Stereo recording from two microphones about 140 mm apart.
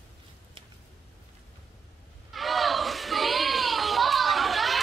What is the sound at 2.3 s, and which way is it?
Children playing, centre (ahead or behind).